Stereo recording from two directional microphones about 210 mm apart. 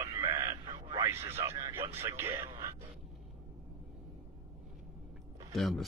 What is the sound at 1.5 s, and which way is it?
Speech, 30° right (ahead or behind).